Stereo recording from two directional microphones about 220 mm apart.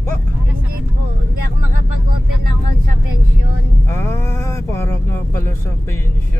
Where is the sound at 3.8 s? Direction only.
10° left (ahead or behind).